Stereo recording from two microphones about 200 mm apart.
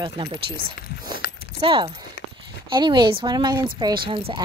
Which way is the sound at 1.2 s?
45° left (ahead or behind).